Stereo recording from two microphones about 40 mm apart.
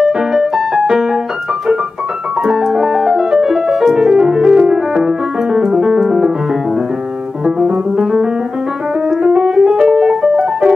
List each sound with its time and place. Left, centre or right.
0.0 s keyboard: centre
0.7 s music: centre
2.4 s music: centre
6.0 s piano: centre
7.4 s piano: centre